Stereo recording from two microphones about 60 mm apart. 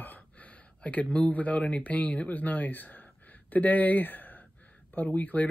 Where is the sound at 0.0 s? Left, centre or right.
Left.